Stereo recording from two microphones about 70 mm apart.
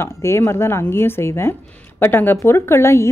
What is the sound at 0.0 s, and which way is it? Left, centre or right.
A woman's voice, left.